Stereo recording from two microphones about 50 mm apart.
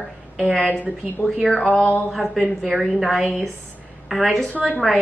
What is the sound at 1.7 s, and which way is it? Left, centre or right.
Speech, left.